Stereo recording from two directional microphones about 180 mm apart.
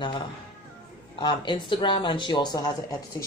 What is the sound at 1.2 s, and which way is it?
A woman's voice, 25° left (ahead or behind).